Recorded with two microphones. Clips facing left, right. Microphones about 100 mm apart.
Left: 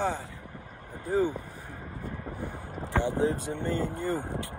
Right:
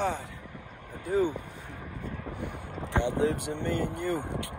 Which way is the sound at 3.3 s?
20° right (ahead or behind).